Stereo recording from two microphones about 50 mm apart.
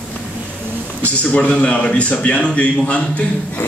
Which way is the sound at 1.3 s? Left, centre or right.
Left.